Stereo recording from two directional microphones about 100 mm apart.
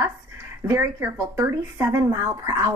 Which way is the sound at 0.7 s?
30° right (ahead or behind).